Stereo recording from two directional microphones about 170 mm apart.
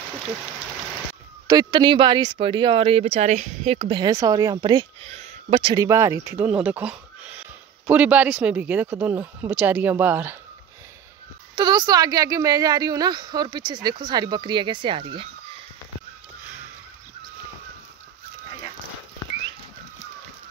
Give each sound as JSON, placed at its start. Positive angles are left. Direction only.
{"t": 1.5, "sound": "speech", "side_deg": -25}
{"t": 3.9, "sound": "a woman's voice", "side_deg": -20}
{"t": 5.1, "sound": "speech", "side_deg": -40}
{"t": 5.9, "sound": "speech", "side_deg": -15}
{"t": 11.5, "sound": "a woman's voice", "side_deg": -25}